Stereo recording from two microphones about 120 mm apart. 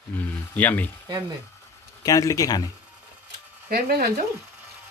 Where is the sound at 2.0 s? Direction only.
30° left (ahead or behind).